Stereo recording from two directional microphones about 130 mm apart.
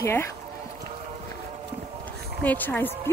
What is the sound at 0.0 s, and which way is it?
Speech, 20° left (ahead or behind).